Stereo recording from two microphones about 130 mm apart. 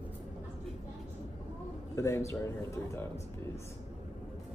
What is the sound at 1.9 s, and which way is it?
Speech, 20° left (ahead or behind).